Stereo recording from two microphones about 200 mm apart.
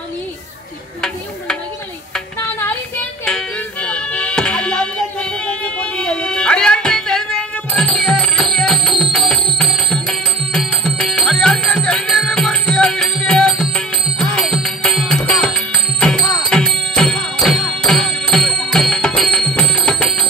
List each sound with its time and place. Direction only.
3.3 s music: 5° left (ahead or behind)